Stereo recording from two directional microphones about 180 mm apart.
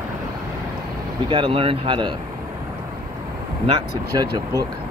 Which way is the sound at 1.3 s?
30° right (ahead or behind).